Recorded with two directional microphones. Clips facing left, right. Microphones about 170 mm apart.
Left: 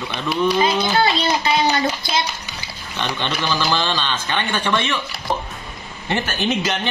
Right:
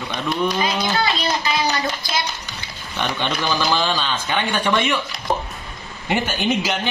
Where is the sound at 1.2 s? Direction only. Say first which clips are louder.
Left 3 dB; 25° left (ahead or behind).